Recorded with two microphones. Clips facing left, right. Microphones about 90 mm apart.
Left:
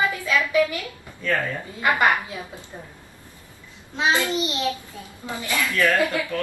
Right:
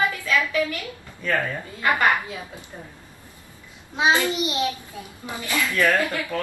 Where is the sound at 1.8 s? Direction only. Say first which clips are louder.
Left 1 dB; 15° left (ahead or behind).